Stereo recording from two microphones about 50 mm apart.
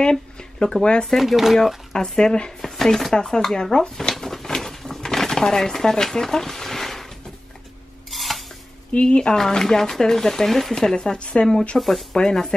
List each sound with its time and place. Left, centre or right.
0.0 s a sound: centre
0.8 s speech: centre
1.1 s speech: centre
2.0 s speech: centre
2.6 s chopping: centre
3.2 s speech: centre
4.1 s a sound: centre
8.1 s stir: centre
8.9 s speech: left
11.8 s speech: centre
12.2 s speech: centre